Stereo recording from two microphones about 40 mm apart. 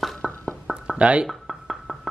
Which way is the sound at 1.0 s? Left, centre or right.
Right.